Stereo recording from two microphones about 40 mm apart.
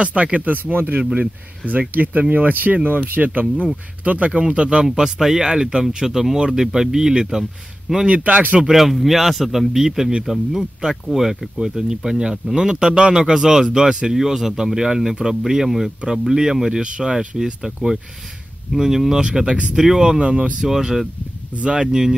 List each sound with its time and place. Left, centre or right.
0.0 s speech: right
4.4 s speech: right
4.9 s speech: centre
8.1 s speech: right
8.6 s speech: centre
16.8 s speech: right
18.7 s speech: centre
19.2 s speech: right
19.7 s speech: centre
20.0 s speech: right
20.6 s speech: centre
21.5 s speech: right